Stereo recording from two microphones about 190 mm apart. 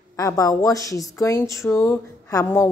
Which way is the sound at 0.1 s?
15° left (ahead or behind).